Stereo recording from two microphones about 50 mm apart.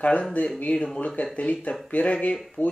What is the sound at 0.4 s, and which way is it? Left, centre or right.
Speech, left.